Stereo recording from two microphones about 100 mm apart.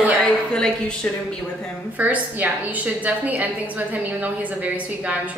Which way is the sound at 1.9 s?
15° right (ahead or behind).